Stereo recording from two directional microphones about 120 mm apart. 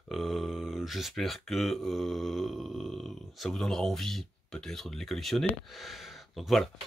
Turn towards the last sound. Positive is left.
turn(degrees=0)  # may be behind; listen again after turning